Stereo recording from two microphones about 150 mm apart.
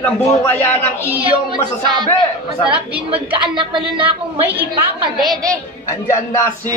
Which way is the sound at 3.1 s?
35° right (ahead or behind).